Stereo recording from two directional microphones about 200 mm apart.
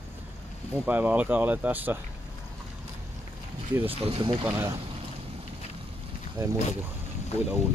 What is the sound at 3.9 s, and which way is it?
Speech, 25° right (ahead or behind).